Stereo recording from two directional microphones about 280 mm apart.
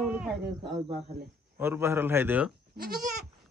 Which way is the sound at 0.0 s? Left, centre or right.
Centre.